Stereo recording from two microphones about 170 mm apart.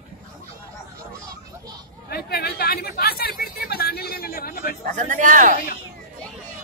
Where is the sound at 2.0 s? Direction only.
65° left (ahead or behind).